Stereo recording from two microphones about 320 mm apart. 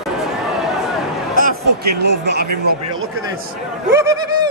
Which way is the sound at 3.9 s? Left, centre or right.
Centre.